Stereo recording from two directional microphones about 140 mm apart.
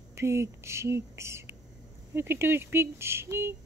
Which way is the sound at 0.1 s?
20° right (ahead or behind).